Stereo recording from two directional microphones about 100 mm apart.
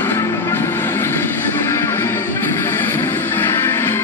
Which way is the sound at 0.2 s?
25° left (ahead or behind).